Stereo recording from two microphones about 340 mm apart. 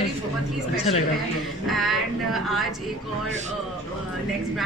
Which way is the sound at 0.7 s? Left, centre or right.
Centre.